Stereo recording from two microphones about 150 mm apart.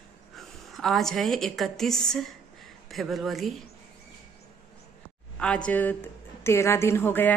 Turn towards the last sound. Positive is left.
turn(degrees=15)  # may be behind; listen again after turning